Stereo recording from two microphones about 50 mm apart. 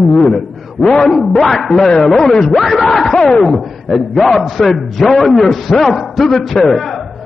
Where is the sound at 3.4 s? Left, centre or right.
Centre.